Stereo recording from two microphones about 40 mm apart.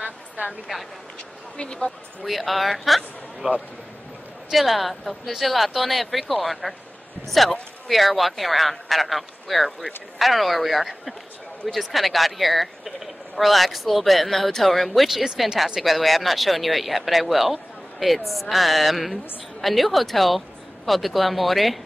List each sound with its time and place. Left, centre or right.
0.0 s a sound: right
1.6 s speech: left
2.2 s speech: centre
3.4 s a man's voice: right
4.6 s speech: centre
15.0 s speech: centre